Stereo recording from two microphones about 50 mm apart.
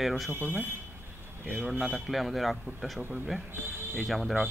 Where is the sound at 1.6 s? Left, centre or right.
Centre.